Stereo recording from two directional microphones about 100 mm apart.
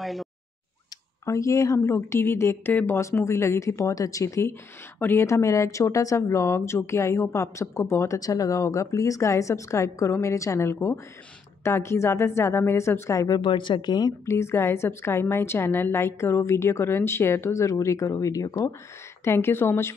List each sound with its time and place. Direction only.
0.0 s speech: centre (ahead or behind)
1.2 s a woman's voice: 30° left (ahead or behind)
13.4 s a woman's voice: 55° left (ahead or behind)
14.2 s a woman's voice: 30° left (ahead or behind)